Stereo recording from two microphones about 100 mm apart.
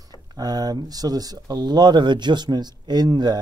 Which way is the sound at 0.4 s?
40° right (ahead or behind).